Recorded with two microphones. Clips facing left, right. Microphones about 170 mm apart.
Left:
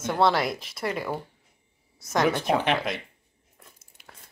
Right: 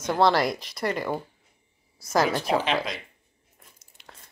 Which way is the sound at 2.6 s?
60° left (ahead or behind).